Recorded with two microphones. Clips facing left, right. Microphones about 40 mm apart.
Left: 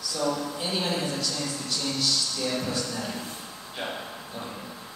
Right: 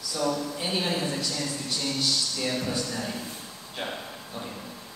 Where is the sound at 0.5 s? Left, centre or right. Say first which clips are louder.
Even; centre.